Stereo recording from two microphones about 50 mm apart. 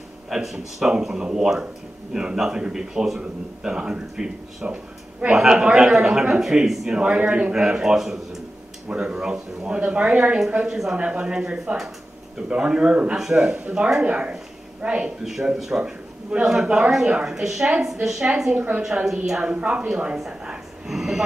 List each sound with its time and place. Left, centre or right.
0.3 s speech: centre
7.0 s speech: right
7.5 s speech: centre
8.8 s speech: centre
10.7 s speech: centre
11.0 s speech: right
13.1 s speech: centre
14.0 s speech: right
15.2 s speech: centre
15.8 s a man's voice: right
16.9 s speech: centre
19.5 s speech: right
20.2 s a sound: centre